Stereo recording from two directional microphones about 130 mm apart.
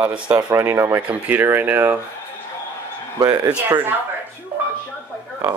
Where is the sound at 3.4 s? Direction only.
15° right (ahead or behind).